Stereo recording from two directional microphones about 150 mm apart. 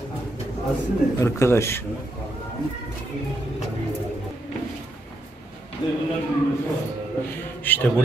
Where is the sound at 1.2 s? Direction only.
20° left (ahead or behind).